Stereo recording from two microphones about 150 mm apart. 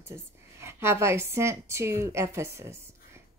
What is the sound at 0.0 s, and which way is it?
A woman's voice, 15° right (ahead or behind).